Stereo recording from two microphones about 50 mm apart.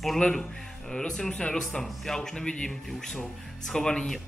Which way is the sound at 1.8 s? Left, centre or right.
Centre.